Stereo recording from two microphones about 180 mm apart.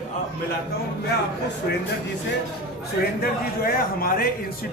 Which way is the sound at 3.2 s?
55° left (ahead or behind).